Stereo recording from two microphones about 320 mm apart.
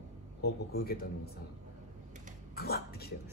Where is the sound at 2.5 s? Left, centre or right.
Left.